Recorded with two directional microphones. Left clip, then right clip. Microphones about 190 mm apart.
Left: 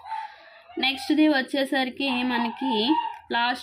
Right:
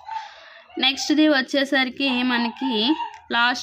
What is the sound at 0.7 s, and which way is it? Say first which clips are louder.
Speech: right 3 dB; 20° right (ahead or behind).